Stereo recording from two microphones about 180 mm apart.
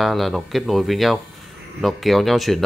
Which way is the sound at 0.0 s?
Centre (ahead or behind).